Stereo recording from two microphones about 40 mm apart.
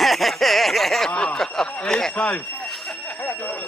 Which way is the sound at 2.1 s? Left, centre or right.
Left.